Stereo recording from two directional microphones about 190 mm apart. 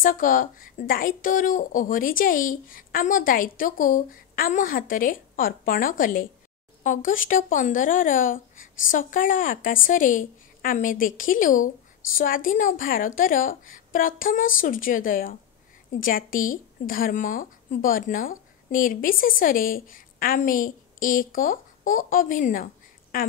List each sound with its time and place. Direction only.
0.0 s a woman's voice: 45° left (ahead or behind)